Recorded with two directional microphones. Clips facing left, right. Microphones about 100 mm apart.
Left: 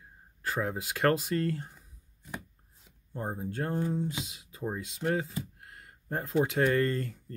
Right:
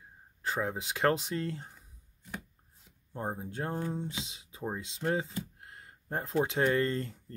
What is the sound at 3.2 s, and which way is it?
Speech, 10° right (ahead or behind).